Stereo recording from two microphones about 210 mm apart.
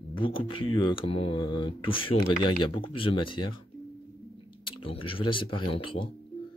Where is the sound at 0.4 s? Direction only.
25° left (ahead or behind).